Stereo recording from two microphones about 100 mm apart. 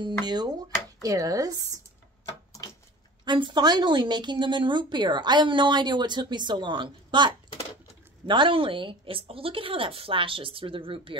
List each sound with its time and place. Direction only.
0.0 s speech: 45° right (ahead or behind)
3.3 s a woman's voice: 50° right (ahead or behind)